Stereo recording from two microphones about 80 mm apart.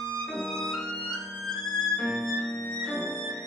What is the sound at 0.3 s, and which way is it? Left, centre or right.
Music, centre.